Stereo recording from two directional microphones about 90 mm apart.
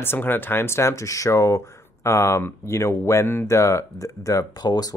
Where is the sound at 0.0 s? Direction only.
25° left (ahead or behind).